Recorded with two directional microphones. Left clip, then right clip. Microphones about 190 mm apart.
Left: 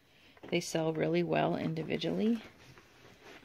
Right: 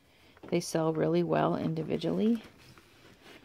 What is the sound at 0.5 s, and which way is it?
Speech, 10° right (ahead or behind).